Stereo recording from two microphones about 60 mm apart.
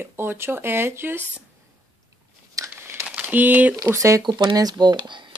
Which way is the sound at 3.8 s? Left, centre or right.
Right.